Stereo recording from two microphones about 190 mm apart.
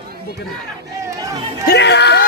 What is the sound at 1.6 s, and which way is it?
Speech, 60° left (ahead or behind).